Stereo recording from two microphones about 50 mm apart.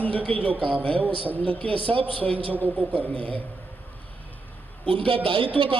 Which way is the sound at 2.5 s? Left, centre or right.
Right.